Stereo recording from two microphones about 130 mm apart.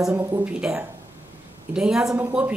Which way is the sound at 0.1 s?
20° right (ahead or behind).